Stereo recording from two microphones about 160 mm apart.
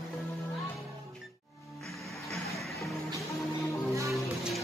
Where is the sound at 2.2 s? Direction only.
Centre (ahead or behind).